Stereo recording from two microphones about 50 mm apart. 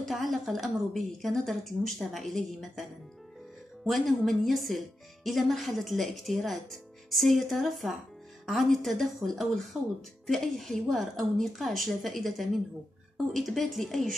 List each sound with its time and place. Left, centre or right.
0.0 s a woman's voice: centre